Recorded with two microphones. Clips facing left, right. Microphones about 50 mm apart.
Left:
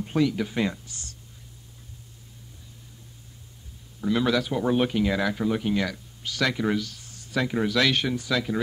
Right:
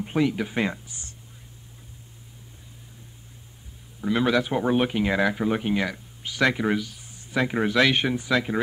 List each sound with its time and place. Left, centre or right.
0.0 s speech: right
4.0 s speech: right